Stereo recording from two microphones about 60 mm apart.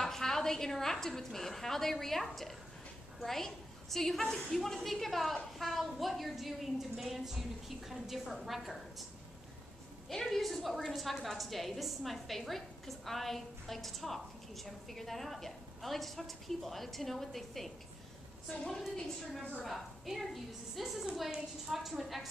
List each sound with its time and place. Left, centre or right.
0.0 s a woman's voice: centre
10.0 s a woman's voice: centre
19.6 s a woman's voice: centre